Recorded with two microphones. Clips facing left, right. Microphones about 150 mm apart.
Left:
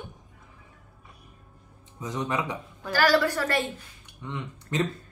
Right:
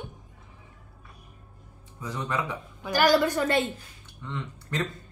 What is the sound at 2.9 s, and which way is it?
Speech, 20° right (ahead or behind).